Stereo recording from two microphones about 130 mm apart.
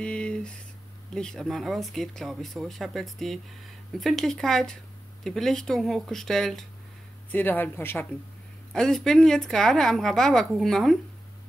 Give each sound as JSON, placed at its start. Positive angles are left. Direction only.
{"t": 0.0, "sound": "a sound", "side_deg": 10}
{"t": 1.1, "sound": "a woman's voice", "side_deg": 5}
{"t": 7.2, "sound": "speech", "side_deg": 15}
{"t": 8.7, "sound": "a woman's voice", "side_deg": 5}